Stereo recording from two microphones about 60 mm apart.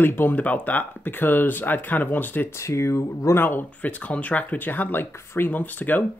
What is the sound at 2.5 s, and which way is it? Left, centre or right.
Speech, left.